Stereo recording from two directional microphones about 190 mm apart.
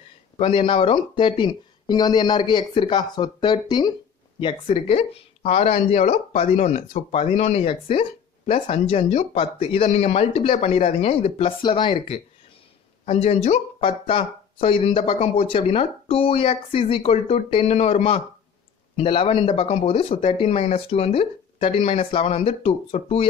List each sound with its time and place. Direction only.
0.4 s speech: 25° left (ahead or behind)